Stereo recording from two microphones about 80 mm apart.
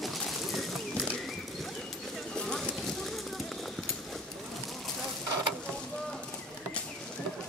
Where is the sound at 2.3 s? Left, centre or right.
Centre.